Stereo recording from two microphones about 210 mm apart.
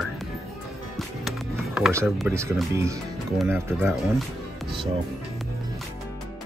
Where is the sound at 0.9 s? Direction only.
Centre (ahead or behind).